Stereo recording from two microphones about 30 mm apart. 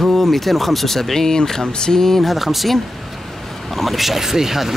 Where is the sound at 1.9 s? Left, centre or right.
Centre.